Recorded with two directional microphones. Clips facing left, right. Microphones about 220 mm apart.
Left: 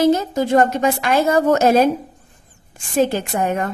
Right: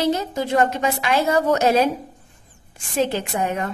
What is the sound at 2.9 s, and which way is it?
Speech, 45° left (ahead or behind).